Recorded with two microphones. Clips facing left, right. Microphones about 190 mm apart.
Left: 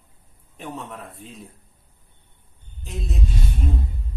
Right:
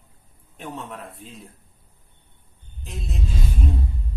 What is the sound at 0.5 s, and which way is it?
Speech, centre (ahead or behind).